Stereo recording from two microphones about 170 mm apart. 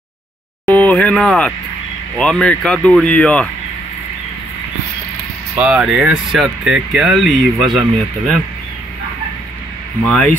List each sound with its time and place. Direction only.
0.7 s a sound: 10° left (ahead or behind)
2.1 s speech: 5° left (ahead or behind)
5.6 s speech: 5° right (ahead or behind)
10.0 s speech: 5° left (ahead or behind)